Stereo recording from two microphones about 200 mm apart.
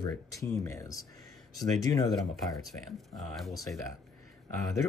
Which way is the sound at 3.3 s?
Centre (ahead or behind).